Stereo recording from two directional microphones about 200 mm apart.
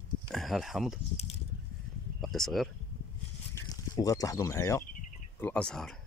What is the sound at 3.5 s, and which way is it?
Speech, 20° left (ahead or behind).